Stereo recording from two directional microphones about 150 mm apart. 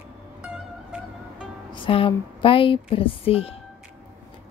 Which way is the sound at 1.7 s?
35° left (ahead or behind).